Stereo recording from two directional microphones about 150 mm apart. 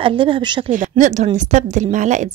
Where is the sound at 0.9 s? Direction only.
50° right (ahead or behind).